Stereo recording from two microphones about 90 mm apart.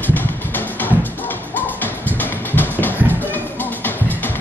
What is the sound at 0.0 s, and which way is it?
Music, 20° left (ahead or behind).